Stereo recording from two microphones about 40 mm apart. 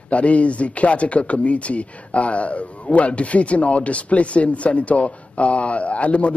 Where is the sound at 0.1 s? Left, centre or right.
Left.